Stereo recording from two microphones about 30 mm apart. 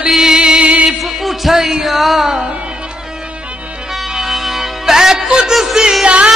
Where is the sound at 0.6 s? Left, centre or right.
Right.